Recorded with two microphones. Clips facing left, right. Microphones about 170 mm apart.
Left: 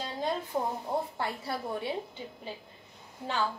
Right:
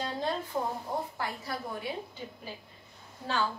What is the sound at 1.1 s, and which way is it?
Speech, 25° left (ahead or behind).